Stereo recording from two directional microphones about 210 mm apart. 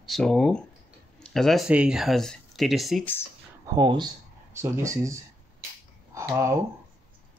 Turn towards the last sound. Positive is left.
turn(degrees=-15)  # may be behind; listen again after turning